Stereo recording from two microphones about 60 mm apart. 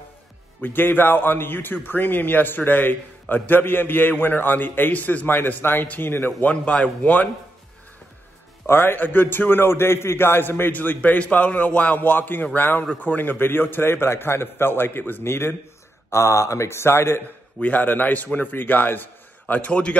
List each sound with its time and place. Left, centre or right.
0.6 s a man's voice: left
6.5 s a man's voice: centre
8.6 s a man's voice: left
16.1 s a man's voice: left
17.6 s a man's voice: left